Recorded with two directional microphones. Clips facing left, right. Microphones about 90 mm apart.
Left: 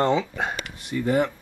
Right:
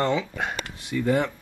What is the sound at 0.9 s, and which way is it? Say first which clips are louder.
Speech: left 1 dB; 10° left (ahead or behind).